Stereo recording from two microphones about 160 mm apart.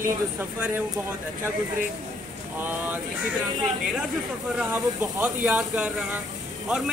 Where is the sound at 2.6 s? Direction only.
10° right (ahead or behind).